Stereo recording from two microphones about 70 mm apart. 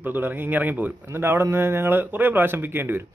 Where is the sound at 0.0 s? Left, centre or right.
Right.